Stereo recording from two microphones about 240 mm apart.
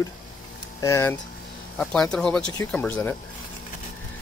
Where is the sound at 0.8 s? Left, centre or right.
Centre.